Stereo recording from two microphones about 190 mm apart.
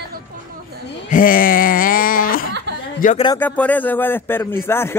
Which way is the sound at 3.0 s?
45° left (ahead or behind).